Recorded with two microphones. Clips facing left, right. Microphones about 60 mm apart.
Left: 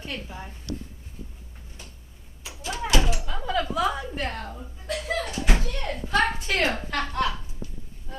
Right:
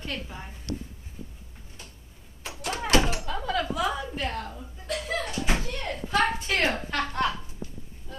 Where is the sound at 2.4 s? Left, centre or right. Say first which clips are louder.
Even; right.